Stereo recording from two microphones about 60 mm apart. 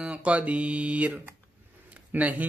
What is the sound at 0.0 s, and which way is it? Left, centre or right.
Speech, right.